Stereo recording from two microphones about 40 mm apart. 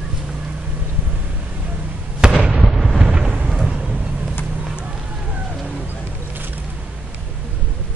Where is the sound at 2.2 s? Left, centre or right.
Right.